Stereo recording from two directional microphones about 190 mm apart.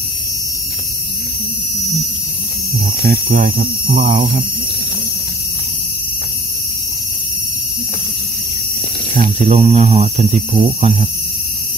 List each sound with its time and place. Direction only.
3.1 s speech: 50° right (ahead or behind)
9.1 s speech: 40° right (ahead or behind)